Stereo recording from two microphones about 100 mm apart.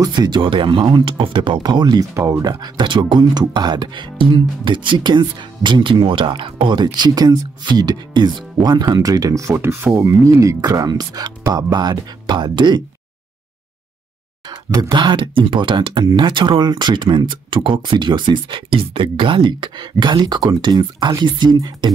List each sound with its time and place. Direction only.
0.0 s speech: 45° right (ahead or behind)
2.1 s speech: 30° right (ahead or behind)
2.6 s speech: 50° right (ahead or behind)
14.8 s speech: 50° right (ahead or behind)